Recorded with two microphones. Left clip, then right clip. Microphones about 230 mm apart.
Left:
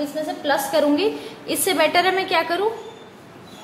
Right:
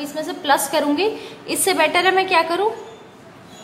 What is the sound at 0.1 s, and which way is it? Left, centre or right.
Speech, right.